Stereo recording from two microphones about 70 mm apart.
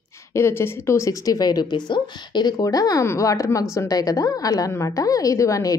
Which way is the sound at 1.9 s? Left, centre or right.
Left.